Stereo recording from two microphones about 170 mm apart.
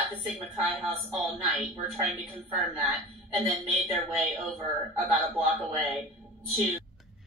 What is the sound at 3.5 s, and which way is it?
Speech, centre (ahead or behind).